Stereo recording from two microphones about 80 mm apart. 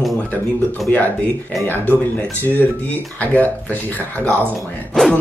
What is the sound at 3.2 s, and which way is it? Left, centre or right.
Speech, left.